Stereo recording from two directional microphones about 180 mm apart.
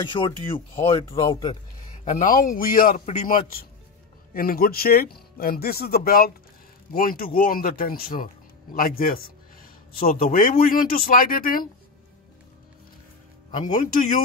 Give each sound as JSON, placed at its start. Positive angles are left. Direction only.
{"t": 0.0, "sound": "speech", "side_deg": 25}
{"t": 1.3, "sound": "speech", "side_deg": 25}
{"t": 2.0, "sound": "speech", "side_deg": 45}
{"t": 13.5, "sound": "speech", "side_deg": 45}